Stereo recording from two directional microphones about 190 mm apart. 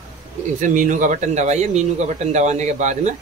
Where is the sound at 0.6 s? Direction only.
40° right (ahead or behind).